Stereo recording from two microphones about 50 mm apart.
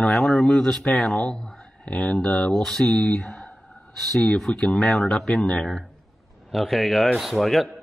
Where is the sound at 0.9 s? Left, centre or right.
Centre.